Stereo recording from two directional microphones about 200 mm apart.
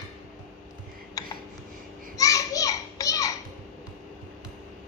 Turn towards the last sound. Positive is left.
turn(degrees=15)  # may be behind; listen again after turning